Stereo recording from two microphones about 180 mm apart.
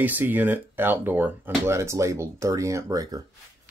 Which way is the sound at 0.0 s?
10° right (ahead or behind).